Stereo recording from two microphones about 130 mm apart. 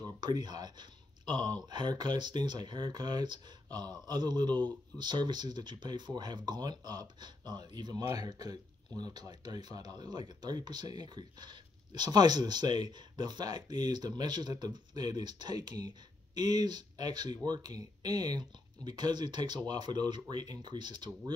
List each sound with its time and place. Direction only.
0.0 s speech: 30° right (ahead or behind)